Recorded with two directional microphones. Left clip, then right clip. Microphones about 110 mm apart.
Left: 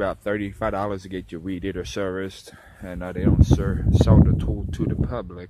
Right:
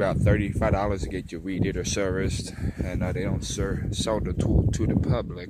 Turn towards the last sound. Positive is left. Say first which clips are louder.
# right 1 dB
turn(degrees=-20)  # may be behind; listen again after turning